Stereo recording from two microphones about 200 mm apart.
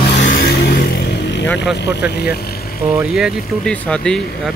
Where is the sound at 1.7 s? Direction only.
55° left (ahead or behind).